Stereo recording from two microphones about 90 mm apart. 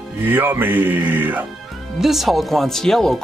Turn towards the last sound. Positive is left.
turn(degrees=5)  # may be behind; listen again after turning